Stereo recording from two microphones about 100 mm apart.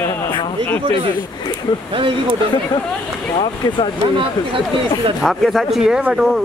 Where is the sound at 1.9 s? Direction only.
60° right (ahead or behind).